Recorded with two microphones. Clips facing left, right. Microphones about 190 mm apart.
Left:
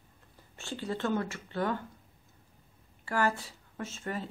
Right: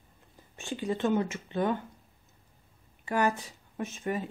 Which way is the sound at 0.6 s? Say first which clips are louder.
Right 4 dB; 15° right (ahead or behind).